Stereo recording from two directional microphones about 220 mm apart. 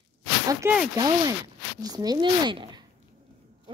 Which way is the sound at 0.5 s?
15° right (ahead or behind).